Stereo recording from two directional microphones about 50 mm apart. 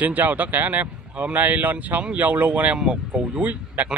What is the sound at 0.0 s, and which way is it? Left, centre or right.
Speech, right.